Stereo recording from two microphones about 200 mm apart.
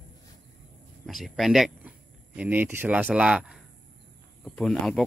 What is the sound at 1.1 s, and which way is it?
Speech, centre (ahead or behind).